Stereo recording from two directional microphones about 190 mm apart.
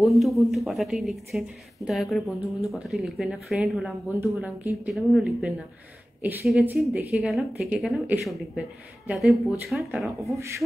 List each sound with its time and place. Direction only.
0.0 s speech: centre (ahead or behind)
10.2 s speech: 15° right (ahead or behind)